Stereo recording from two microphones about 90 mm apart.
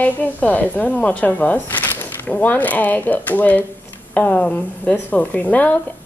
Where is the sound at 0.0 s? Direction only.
15° left (ahead or behind).